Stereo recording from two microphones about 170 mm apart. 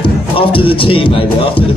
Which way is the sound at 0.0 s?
30° left (ahead or behind).